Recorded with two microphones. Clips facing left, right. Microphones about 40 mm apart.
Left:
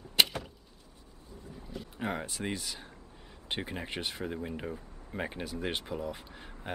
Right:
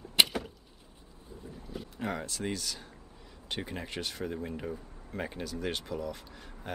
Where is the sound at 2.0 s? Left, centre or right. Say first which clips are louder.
Even; centre.